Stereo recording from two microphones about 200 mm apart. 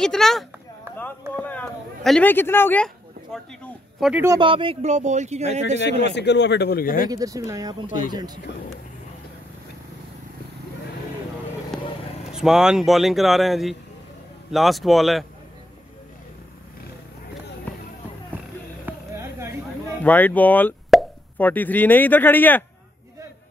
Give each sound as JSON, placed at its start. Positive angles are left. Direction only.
{"t": 0.0, "sound": "speech", "side_deg": 0}
{"t": 0.9, "sound": "a sound", "side_deg": -10}
{"t": 1.3, "sound": "speech", "side_deg": 10}
{"t": 4.1, "sound": "speech", "side_deg": -10}
{"t": 4.4, "sound": "speech", "side_deg": -25}
{"t": 6.0, "sound": "speech", "side_deg": 60}
{"t": 7.1, "sound": "speech", "side_deg": -15}
{"t": 11.7, "sound": "vehicle", "side_deg": 5}
{"t": 12.3, "sound": "speech", "side_deg": 0}
{"t": 18.3, "sound": "music", "side_deg": -10}
{"t": 20.0, "sound": "speech", "side_deg": 10}